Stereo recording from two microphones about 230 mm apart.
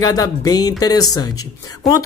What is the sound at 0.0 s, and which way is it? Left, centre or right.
Speech, centre.